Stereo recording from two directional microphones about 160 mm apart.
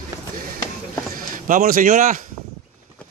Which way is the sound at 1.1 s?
60° right (ahead or behind).